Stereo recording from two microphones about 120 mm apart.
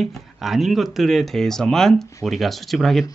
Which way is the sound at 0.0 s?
Centre (ahead or behind).